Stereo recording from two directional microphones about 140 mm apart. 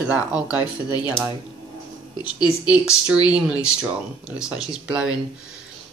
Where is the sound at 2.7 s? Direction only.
5° right (ahead or behind).